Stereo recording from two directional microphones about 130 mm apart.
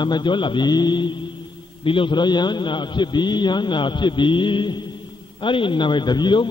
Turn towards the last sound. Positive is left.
turn(degrees=35)  # may be behind; listen again after turning